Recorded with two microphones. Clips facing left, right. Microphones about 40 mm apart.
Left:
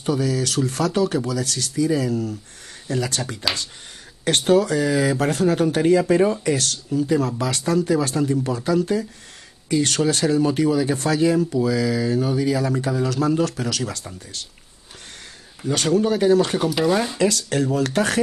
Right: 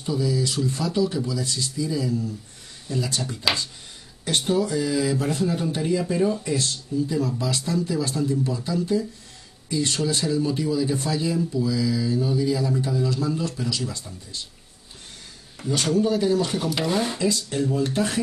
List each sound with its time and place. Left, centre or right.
0.0 s speech: left
6.4 s speech: left
15.7 s speech: left
16.6 s speech: centre
17.2 s speech: left